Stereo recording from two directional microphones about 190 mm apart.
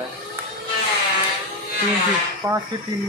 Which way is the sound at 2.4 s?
15° right (ahead or behind).